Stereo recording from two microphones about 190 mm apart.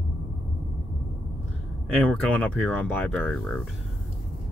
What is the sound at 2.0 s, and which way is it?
Speech, 10° left (ahead or behind).